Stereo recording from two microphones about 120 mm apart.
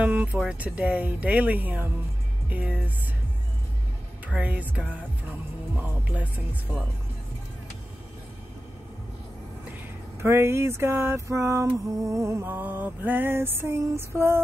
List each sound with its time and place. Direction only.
0.0 s speech: 15° right (ahead or behind)
4.3 s speech: 10° right (ahead or behind)
10.2 s mantra: 20° right (ahead or behind)